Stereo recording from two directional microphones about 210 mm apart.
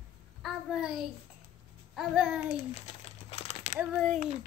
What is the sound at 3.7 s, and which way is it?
Speech, centre (ahead or behind).